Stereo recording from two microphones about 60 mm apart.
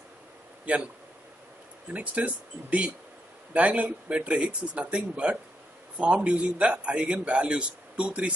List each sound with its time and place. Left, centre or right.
1.9 s a man's voice: right